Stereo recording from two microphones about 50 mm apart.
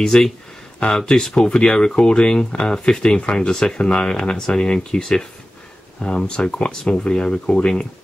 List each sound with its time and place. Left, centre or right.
0.0 s speech: centre